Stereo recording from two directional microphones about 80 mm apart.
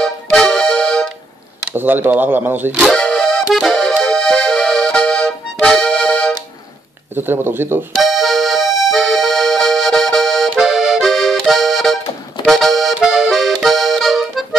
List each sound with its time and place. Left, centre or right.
0.0 s accordion: centre
1.7 s speech: right
3.0 s accordion: centre
7.2 s speech: right
7.9 s accordion: centre